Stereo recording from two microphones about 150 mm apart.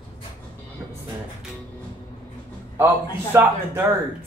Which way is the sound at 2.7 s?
15° right (ahead or behind).